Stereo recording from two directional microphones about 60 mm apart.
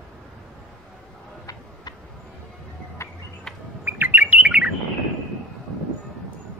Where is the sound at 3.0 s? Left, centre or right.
Left.